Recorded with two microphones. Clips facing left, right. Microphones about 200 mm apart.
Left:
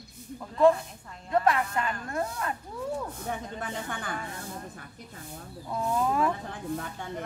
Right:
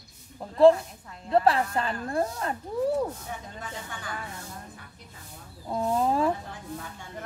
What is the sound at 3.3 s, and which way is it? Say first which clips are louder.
Speech: left 4 dB; 55° left (ahead or behind).